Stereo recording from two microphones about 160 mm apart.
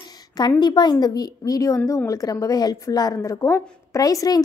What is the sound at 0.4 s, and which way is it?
A woman's voice, 25° left (ahead or behind).